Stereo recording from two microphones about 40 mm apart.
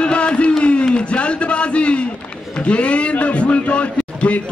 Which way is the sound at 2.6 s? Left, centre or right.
Left.